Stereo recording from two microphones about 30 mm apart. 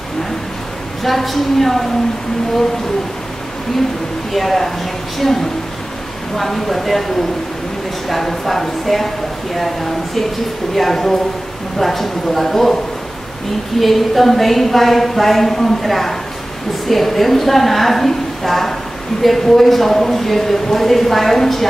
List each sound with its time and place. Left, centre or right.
1.0 s speech: centre
4.3 s speech: centre
13.7 s a woman's voice: centre